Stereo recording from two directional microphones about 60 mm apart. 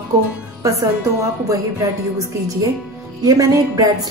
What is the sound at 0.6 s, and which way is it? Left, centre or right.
A woman's voice, right.